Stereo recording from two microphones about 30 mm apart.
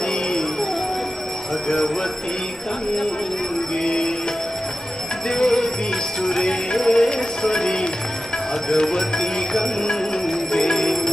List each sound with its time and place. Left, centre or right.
3.8 s speech: left
5.3 s speech: centre
9.8 s music: left
10.6 s music: centre